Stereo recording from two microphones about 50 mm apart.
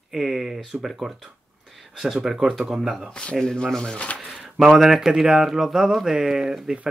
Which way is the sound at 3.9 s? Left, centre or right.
Left.